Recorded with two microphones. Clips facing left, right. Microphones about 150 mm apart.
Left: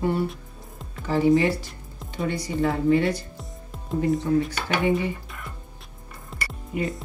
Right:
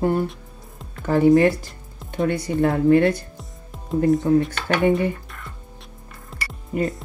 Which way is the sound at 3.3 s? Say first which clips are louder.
Left 1 dB; centre (ahead or behind).